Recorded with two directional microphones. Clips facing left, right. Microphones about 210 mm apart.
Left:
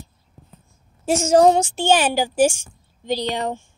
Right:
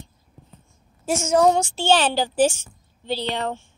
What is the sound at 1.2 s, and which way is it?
Speech, 35° left (ahead or behind).